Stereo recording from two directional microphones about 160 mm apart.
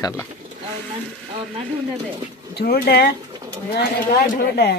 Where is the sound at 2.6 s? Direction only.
75° left (ahead or behind).